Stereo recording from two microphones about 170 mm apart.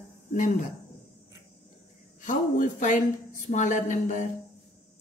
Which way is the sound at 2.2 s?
50° left (ahead or behind).